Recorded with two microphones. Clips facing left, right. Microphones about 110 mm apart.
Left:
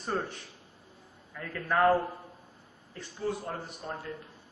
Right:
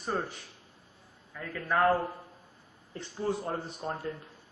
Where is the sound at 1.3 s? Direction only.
10° right (ahead or behind).